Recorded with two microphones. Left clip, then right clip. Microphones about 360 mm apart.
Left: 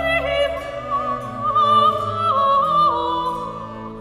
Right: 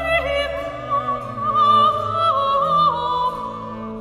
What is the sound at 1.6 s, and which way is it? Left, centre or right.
Music, centre.